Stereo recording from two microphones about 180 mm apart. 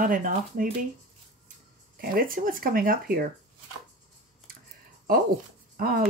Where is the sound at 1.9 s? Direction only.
55° right (ahead or behind).